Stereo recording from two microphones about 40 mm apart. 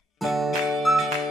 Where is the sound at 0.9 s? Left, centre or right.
Centre.